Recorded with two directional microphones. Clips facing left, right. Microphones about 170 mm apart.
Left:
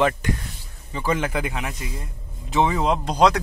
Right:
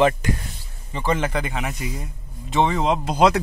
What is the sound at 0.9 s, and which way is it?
Speech, 5° left (ahead or behind).